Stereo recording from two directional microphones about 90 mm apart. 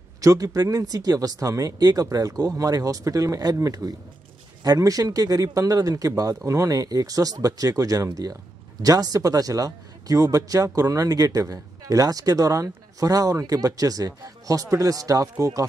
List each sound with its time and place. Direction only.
0.2 s a man's voice: 40° right (ahead or behind)